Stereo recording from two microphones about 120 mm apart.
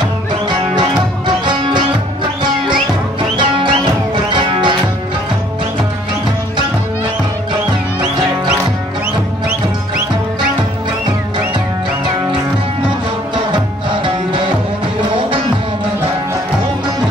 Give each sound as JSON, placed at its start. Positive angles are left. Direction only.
{"t": 0.7, "sound": "music", "side_deg": -40}
{"t": 4.3, "sound": "music", "side_deg": -40}